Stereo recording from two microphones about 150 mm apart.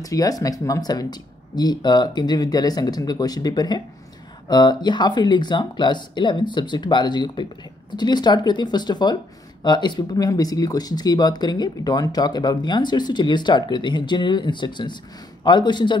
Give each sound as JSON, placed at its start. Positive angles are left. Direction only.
{"t": 0.0, "sound": "a man's voice", "side_deg": 25}